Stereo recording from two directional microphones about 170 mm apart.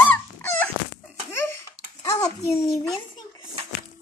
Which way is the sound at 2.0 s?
20° left (ahead or behind).